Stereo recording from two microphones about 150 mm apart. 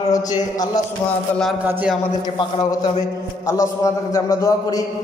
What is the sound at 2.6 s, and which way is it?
A man's voice, 25° left (ahead or behind).